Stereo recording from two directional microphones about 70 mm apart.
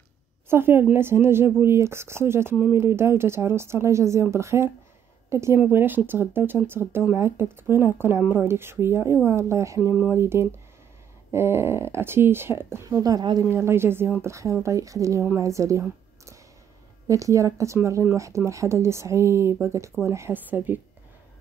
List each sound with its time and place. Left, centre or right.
0.5 s speech: right
5.7 s speech: right
12.8 s speech: right
13.4 s speech: right
17.1 s speech: right
20.3 s a woman's voice: right